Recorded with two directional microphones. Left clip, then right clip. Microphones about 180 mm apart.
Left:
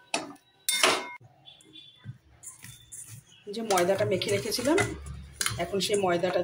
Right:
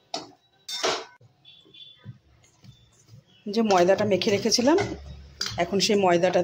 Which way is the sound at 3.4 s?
50° right (ahead or behind).